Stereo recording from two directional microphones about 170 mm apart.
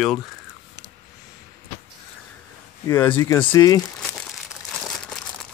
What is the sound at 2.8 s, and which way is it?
Speech, 10° left (ahead or behind).